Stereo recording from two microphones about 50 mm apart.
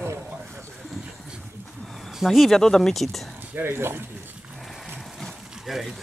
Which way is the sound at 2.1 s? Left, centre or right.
Centre.